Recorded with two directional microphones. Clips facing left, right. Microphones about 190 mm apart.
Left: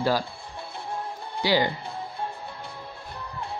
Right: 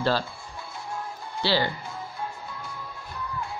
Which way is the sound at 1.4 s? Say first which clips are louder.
Left 2 dB; 15° left (ahead or behind).